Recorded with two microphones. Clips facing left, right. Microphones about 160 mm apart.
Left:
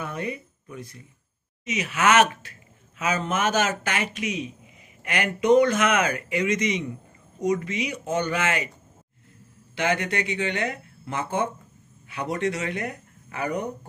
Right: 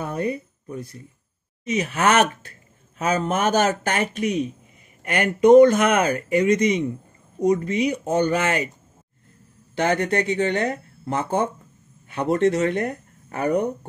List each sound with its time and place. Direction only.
0.0 s speech: 40° right (ahead or behind)
1.6 s speech: 50° right (ahead or behind)
9.8 s speech: 45° right (ahead or behind)